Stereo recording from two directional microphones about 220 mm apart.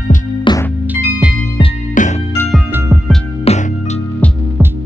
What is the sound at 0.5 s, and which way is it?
Music, 20° left (ahead or behind).